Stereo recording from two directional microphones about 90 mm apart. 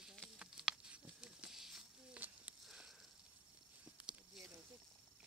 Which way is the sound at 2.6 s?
5° right (ahead or behind).